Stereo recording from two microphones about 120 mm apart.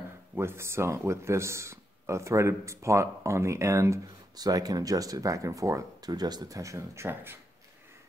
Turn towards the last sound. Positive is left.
turn(degrees=-20)  # may be behind; listen again after turning